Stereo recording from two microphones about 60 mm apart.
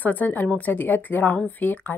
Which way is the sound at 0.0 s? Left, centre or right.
Left.